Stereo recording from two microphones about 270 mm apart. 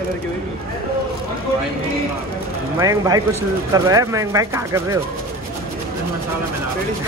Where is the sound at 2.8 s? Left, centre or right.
Centre.